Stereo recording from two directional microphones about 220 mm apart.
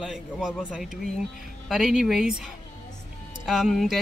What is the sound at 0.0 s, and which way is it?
Speech, centre (ahead or behind).